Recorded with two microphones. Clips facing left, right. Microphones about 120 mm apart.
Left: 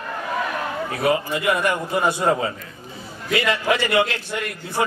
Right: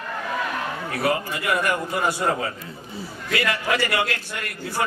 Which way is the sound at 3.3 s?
20° left (ahead or behind).